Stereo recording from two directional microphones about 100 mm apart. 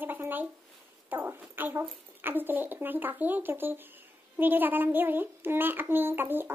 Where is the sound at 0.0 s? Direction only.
20° right (ahead or behind).